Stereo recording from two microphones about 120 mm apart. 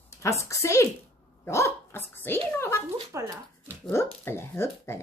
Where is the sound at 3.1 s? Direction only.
25° right (ahead or behind).